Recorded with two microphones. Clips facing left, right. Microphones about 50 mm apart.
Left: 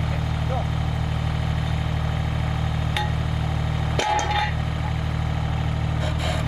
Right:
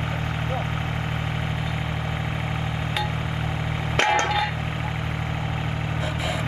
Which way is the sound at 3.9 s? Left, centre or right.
Right.